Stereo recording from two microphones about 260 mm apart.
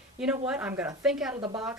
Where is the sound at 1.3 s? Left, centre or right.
Centre.